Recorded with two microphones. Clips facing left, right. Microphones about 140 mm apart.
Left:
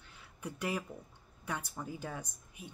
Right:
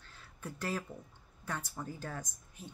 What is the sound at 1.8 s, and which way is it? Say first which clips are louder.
Speech: left 1 dB; 10° left (ahead or behind).